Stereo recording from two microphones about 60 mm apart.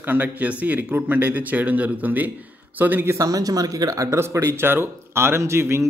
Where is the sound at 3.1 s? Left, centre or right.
Right.